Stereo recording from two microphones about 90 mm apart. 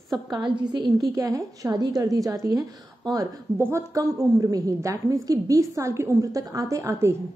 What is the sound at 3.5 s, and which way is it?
A woman's voice, 30° right (ahead or behind).